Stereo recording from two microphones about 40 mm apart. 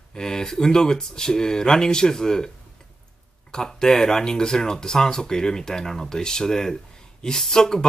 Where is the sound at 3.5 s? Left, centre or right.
Centre.